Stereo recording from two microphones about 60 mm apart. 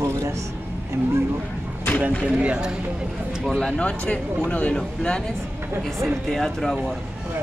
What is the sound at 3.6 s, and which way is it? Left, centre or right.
Speech, centre.